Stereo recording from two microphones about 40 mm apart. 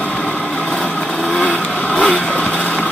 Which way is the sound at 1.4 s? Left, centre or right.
Left.